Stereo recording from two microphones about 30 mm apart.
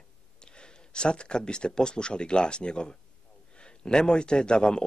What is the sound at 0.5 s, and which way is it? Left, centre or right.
A man's voice, left.